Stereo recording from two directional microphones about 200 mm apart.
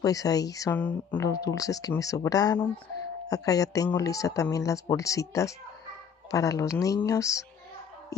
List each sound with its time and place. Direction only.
0.0 s speech: 15° left (ahead or behind)